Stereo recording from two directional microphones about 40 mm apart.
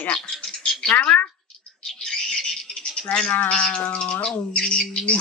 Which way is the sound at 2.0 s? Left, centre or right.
Centre.